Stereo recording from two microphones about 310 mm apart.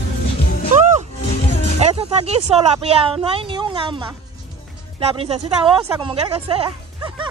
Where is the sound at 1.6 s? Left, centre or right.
Right.